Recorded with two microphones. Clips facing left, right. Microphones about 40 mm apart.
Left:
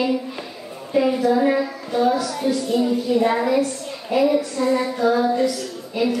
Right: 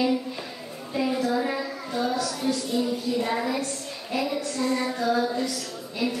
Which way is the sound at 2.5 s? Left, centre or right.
Left.